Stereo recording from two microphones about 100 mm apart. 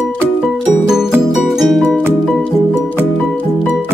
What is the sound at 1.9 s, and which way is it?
Music, 15° right (ahead or behind).